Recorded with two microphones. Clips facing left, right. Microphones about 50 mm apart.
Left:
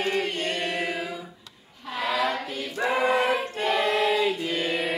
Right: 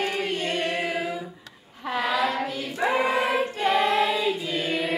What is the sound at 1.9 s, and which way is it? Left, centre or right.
Choir, centre.